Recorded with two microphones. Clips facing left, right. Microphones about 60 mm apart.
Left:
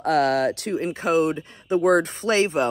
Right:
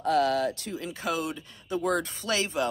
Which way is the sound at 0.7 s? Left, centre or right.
Left.